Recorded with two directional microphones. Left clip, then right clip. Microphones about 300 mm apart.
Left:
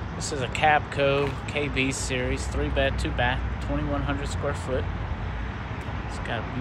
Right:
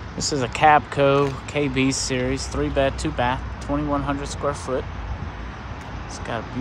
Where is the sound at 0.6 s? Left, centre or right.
Right.